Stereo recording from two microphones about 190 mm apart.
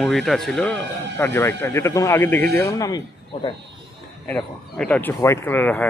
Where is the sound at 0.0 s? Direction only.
Centre (ahead or behind); by 3.0 s 15° left (ahead or behind).